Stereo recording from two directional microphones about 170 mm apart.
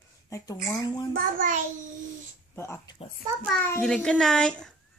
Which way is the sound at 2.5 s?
15° left (ahead or behind).